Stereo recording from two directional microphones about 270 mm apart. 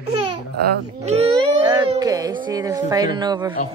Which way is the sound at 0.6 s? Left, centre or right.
Right.